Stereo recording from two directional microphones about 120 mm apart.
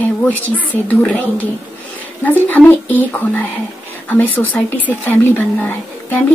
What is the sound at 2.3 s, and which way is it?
A woman's voice, 15° left (ahead or behind).